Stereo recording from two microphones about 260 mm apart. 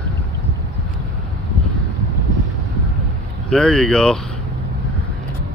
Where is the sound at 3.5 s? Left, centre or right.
Centre.